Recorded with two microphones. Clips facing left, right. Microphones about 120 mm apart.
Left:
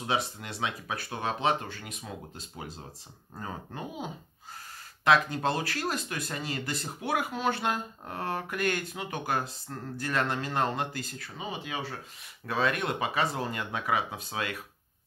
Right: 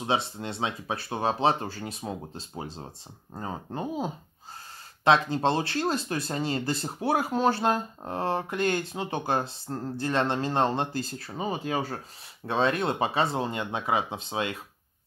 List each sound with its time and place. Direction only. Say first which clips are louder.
0.0 s speech: right 3 dB; 25° right (ahead or behind)
12.4 s speech: right 4 dB; 30° right (ahead or behind)